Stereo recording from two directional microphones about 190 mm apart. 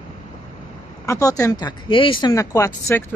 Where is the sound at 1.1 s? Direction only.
15° left (ahead or behind).